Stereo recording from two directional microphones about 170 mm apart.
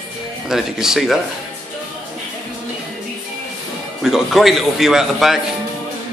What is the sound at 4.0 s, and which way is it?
A man's voice, centre (ahead or behind).